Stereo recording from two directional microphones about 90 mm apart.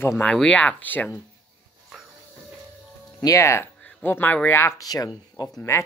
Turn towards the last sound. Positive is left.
turn(degrees=40)  # may be behind; listen again after turning